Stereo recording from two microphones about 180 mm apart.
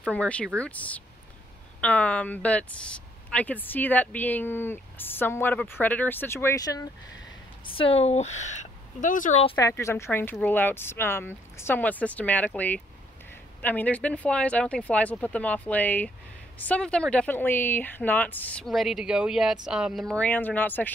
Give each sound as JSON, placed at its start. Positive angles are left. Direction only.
{"t": 0.1, "sound": "speech", "side_deg": 5}
{"t": 7.6, "sound": "speech", "side_deg": 30}
{"t": 9.6, "sound": "speech", "side_deg": 15}